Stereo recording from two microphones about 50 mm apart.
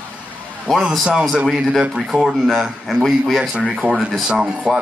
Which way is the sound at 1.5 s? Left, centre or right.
Centre.